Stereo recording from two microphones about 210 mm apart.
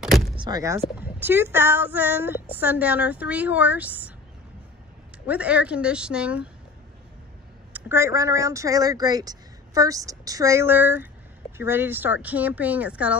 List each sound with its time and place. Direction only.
0.0 s vehicle: centre (ahead or behind)
0.4 s speech: 15° right (ahead or behind)
5.2 s a woman's voice: 5° right (ahead or behind)
7.7 s speech: 10° right (ahead or behind)